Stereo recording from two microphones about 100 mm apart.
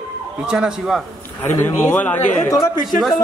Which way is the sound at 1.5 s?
20° left (ahead or behind).